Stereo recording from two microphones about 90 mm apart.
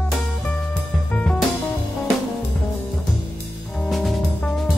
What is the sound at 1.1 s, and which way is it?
Music, 15° left (ahead or behind).